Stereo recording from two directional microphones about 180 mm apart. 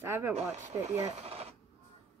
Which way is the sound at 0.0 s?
10° right (ahead or behind).